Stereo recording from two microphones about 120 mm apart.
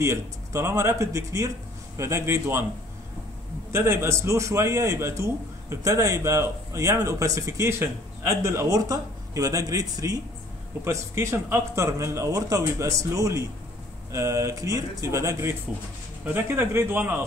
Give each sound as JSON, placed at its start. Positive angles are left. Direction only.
{"t": 0.0, "sound": "a man's voice", "side_deg": -25}
{"t": 3.7, "sound": "a man's voice", "side_deg": -20}